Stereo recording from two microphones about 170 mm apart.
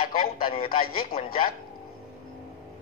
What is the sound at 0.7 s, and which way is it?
Speech, 60° left (ahead or behind).